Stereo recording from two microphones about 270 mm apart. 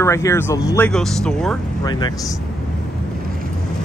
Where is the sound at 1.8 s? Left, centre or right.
Centre.